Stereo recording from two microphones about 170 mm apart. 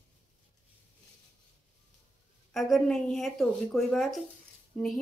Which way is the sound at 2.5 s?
Centre (ahead or behind).